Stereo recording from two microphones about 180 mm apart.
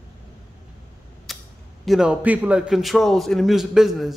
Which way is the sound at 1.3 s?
Centre (ahead or behind).